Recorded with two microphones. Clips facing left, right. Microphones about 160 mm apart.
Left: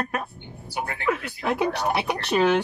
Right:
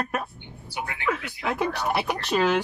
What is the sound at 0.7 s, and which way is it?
Speech, 40° left (ahead or behind).